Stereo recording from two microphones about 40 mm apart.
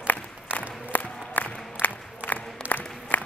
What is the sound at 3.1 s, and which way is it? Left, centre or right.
Walk, left.